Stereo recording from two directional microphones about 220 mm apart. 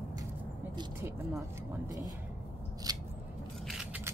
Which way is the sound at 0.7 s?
15° right (ahead or behind).